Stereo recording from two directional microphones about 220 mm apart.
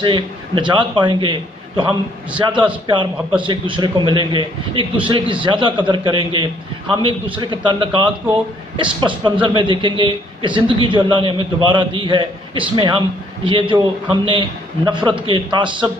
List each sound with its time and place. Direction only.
0.0 s a man's voice: 20° right (ahead or behind)